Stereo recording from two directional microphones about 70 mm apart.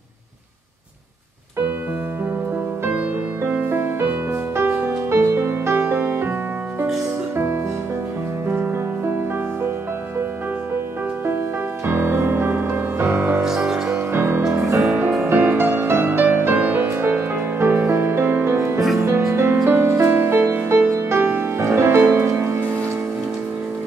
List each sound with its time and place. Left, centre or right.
2.9 s music: right
8.5 s music: right
11.8 s music: right
13.4 s music: centre
13.9 s music: right